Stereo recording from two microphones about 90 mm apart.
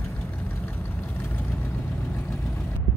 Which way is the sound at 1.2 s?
25° left (ahead or behind).